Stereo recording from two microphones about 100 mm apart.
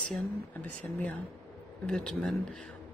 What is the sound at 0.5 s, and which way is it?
Speech, 15° left (ahead or behind).